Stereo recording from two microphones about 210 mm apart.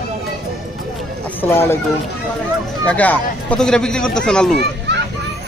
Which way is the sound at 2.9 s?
5° left (ahead or behind).